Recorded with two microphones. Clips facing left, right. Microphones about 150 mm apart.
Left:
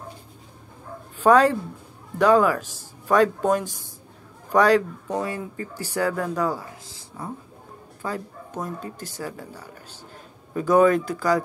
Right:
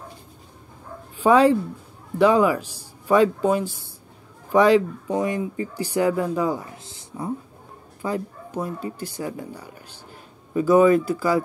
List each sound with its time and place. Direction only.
1.3 s a man's voice: 10° right (ahead or behind)
6.6 s speech: 25° right (ahead or behind)
8.0 s speech: 10° right (ahead or behind)
10.5 s speech: 5° right (ahead or behind)